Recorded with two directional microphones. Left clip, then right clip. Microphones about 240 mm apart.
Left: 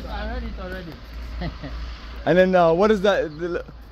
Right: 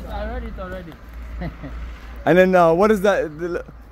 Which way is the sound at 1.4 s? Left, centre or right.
Centre.